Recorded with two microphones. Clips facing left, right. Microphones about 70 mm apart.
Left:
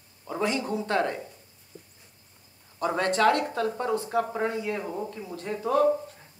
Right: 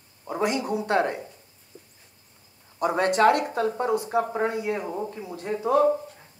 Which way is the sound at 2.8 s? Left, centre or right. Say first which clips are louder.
Right 3 dB; centre.